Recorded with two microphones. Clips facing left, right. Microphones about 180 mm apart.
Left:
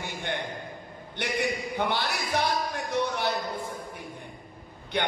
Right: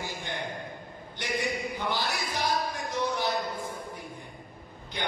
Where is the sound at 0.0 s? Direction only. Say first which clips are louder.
Left 2 dB; 60° left (ahead or behind).